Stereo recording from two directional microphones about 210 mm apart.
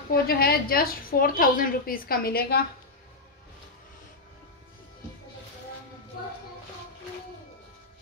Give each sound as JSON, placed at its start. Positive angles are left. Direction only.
{"t": 0.1, "sound": "a woman's voice", "side_deg": 45}